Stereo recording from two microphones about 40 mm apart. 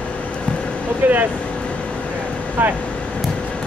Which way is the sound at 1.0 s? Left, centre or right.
Right.